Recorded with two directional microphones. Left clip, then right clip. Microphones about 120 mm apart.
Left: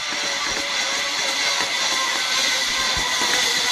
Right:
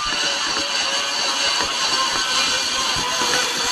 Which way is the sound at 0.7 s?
45° left (ahead or behind).